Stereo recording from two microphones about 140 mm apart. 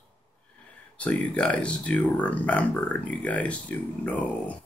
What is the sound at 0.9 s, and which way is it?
Speech, 10° left (ahead or behind).